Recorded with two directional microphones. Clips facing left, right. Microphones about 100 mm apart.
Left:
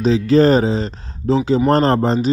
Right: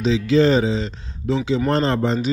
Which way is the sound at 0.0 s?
45° left (ahead or behind).